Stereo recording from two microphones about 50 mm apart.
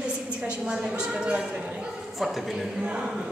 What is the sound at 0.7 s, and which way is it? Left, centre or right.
Speech, centre.